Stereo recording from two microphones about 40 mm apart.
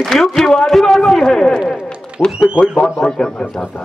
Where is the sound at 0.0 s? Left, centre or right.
Centre.